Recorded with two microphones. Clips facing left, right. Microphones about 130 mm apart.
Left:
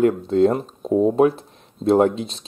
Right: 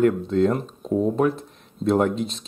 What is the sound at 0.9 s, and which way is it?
Speech, 20° left (ahead or behind).